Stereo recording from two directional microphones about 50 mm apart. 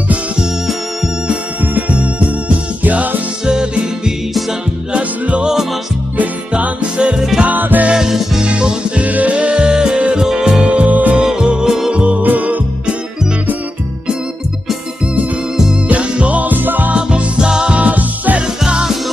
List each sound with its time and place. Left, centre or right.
1.6 s music: right
3.4 s music: centre
4.3 s music: centre
4.9 s music: right
7.2 s music: centre
7.4 s music: right
7.9 s music: centre
8.5 s music: right
11.1 s music: centre
11.9 s music: right
15.9 s music: right
17.1 s music: centre
17.7 s music: right